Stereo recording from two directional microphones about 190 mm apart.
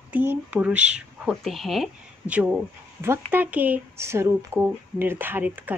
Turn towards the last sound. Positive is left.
turn(degrees=-10)  # may be behind; listen again after turning